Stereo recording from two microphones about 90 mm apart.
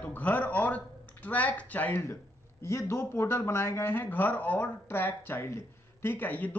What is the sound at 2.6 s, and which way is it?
Speech, 35° left (ahead or behind).